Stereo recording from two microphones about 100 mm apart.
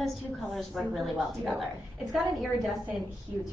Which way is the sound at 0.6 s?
Centre (ahead or behind).